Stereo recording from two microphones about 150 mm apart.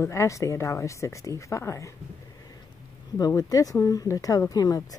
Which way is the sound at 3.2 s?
25° left (ahead or behind).